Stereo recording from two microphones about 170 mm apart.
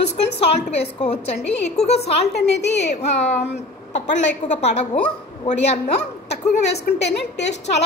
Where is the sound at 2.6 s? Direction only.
90° left.